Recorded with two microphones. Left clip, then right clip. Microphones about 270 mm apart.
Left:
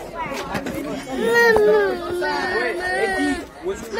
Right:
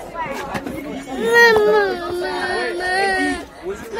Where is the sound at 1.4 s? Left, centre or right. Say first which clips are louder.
Right 3 dB; centre.